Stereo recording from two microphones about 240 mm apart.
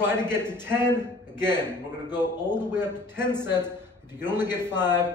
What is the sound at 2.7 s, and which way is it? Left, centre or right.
Speech, centre.